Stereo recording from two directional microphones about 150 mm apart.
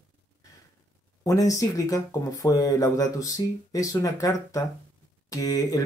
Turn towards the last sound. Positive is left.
turn(degrees=25)  # may be behind; listen again after turning